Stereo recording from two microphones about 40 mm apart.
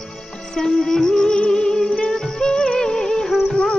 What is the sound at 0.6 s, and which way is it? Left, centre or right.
Music, centre.